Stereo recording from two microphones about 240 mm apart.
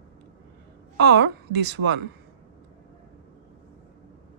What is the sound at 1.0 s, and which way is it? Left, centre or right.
A woman's voice, right.